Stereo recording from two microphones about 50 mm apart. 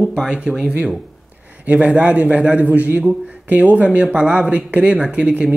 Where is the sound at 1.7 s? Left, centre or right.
Right.